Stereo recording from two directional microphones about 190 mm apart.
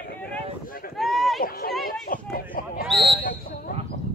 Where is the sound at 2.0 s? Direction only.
50° left (ahead or behind).